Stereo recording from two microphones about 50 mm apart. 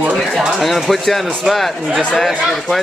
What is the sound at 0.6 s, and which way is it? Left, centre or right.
Speech, centre.